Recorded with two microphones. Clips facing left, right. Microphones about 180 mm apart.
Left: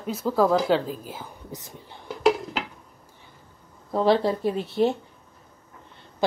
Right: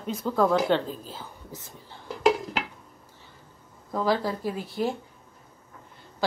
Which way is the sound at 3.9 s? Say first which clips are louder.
Left 5 dB; 30° left (ahead or behind).